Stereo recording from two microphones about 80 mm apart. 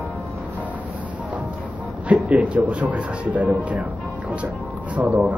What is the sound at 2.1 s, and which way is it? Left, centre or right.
Speech, centre.